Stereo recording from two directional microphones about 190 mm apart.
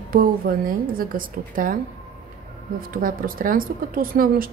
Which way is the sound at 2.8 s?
50° right (ahead or behind).